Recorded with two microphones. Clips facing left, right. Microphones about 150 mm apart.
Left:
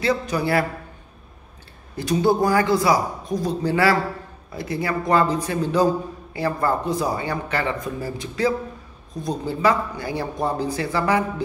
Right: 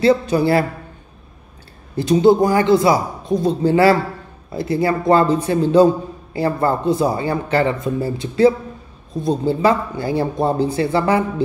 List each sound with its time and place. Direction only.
0.0 s a man's voice: 30° right (ahead or behind)
2.0 s a man's voice: 25° right (ahead or behind)